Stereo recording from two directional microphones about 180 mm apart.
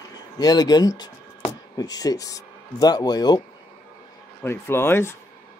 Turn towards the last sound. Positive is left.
turn(degrees=15)  # may be behind; listen again after turning